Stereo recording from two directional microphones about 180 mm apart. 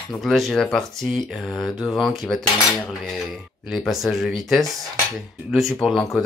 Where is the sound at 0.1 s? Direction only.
Centre (ahead or behind).